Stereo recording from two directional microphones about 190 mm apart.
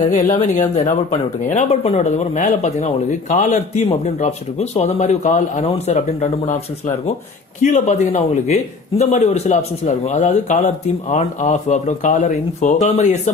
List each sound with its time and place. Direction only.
0.6 s speech: 40° left (ahead or behind)
7.6 s speech: 40° left (ahead or behind)